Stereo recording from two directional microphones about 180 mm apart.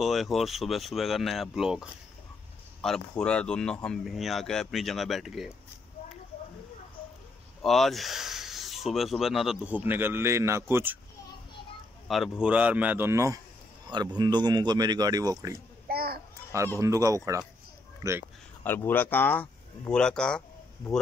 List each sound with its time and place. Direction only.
0.0 s speech: centre (ahead or behind)
7.6 s speech: centre (ahead or behind)
12.1 s a man's voice: centre (ahead or behind); by 15.6 s 20° right (ahead or behind)
15.9 s children playing: 60° right (ahead or behind)
16.8 s a man's voice: 15° right (ahead or behind)
18.6 s speech: 10° left (ahead or behind)